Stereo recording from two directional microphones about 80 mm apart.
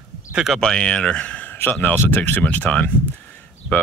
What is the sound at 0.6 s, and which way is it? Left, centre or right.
Speech, centre.